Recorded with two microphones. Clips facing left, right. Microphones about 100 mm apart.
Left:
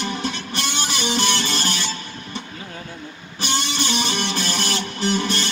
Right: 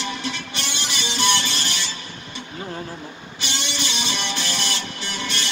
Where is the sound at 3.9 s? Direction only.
45° left (ahead or behind).